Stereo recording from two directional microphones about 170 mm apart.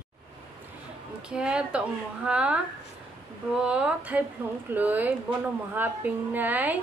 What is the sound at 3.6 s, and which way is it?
A woman's voice, 5° right (ahead or behind).